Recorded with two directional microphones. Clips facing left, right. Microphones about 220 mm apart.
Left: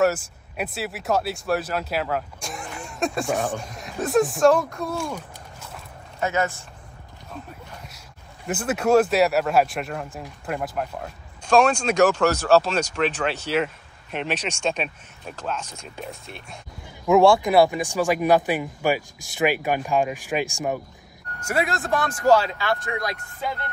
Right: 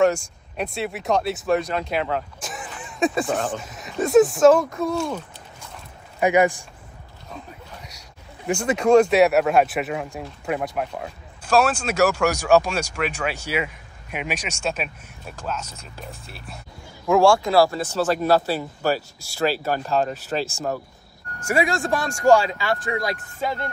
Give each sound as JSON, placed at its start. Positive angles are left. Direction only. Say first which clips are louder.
{"t": 0.0, "sound": "speech", "louder": "right 2 dB", "side_deg": 5}
{"t": 6.1, "sound": "speech", "louder": "right 7 dB", "side_deg": -15}
{"t": 8.5, "sound": "speech", "louder": "right 3 dB", "side_deg": 5}
{"t": 17.1, "sound": "speech", "louder": "left 1 dB", "side_deg": 20}
{"t": 21.4, "sound": "speech", "louder": "right 3 dB", "side_deg": -10}
{"t": 22.2, "sound": "speech", "louder": "right 2 dB", "side_deg": -10}